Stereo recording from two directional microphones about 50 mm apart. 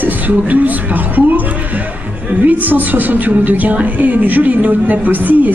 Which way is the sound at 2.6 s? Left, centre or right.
Right.